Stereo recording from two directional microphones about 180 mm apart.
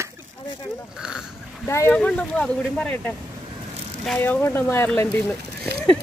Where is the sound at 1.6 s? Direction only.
15° left (ahead or behind).